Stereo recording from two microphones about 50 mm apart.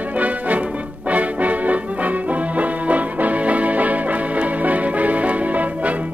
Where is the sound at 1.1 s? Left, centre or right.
Right.